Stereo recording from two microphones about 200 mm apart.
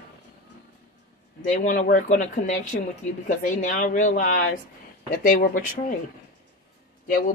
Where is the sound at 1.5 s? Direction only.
40° left (ahead or behind).